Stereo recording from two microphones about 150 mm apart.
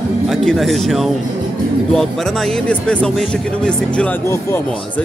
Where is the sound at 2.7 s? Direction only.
5° left (ahead or behind).